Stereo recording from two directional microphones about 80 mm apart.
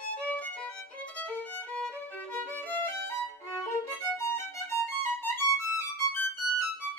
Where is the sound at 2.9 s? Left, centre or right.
Left.